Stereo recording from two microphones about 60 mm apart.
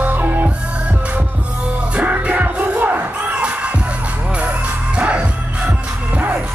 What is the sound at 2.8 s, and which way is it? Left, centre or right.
Crowd, right.